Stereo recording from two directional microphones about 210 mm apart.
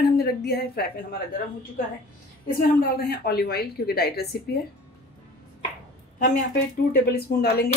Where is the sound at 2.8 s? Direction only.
50° left (ahead or behind).